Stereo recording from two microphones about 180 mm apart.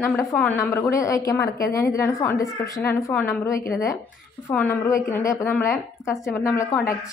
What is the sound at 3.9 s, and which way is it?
A woman's voice, 5° left (ahead or behind).